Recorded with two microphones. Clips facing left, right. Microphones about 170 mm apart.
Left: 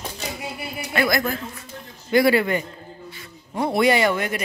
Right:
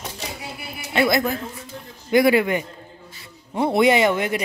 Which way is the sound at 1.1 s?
20° right (ahead or behind).